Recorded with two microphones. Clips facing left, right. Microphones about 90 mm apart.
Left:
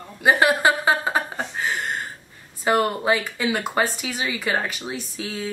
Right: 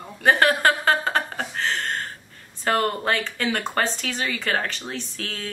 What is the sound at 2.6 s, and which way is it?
A woman's voice, 10° left (ahead or behind).